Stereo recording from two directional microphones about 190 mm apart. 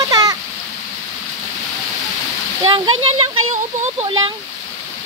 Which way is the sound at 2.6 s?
25° right (ahead or behind).